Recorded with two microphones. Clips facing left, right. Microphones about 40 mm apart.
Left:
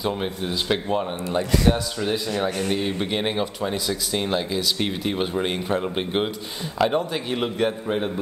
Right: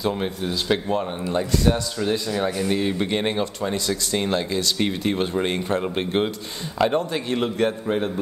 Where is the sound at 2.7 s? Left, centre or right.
Left.